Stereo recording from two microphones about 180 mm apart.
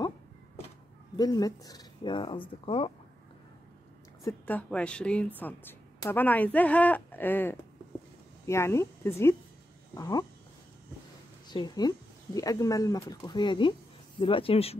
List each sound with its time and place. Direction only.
1.1 s speech: 20° left (ahead or behind)
4.2 s a woman's voice: 15° left (ahead or behind)
11.4 s a woman's voice: 25° left (ahead or behind)